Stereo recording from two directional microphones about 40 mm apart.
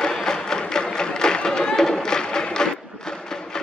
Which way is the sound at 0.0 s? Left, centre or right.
Centre.